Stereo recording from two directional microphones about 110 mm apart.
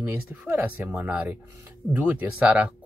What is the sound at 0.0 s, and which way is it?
Speech, 15° right (ahead or behind).